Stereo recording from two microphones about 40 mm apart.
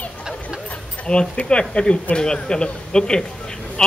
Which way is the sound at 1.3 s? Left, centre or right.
Left.